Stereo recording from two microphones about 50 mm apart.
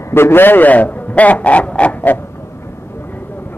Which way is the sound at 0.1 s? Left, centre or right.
Left.